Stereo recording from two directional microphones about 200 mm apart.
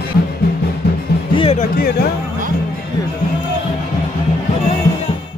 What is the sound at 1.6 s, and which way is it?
Speech, 50° left (ahead or behind).